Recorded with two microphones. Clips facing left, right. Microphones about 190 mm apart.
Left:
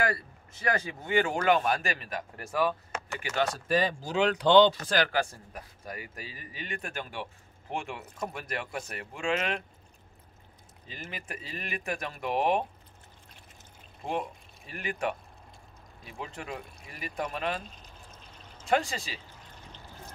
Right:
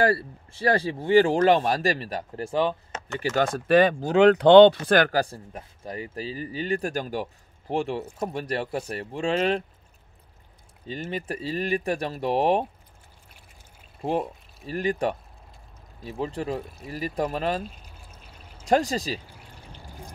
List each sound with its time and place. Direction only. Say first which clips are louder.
0.0 s speech: right 8 dB; 30° right (ahead or behind)
3.2 s speech: right 6 dB; 45° right (ahead or behind)
5.1 s speech: right 5 dB; 30° right (ahead or behind)
10.9 s speech: right 10 dB; 30° right (ahead or behind)
14.7 s speech: right 7 dB; 35° right (ahead or behind)
17.6 s pour: right 5 dB; 10° right (ahead or behind)
18.7 s speech: right 6 dB; 40° right (ahead or behind)
19.2 s drip: right 3 dB; 10° right (ahead or behind)